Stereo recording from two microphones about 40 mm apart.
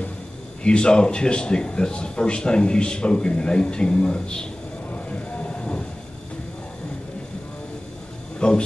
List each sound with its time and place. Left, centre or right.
0.7 s speech: left
4.9 s a sound: left
8.4 s speech: left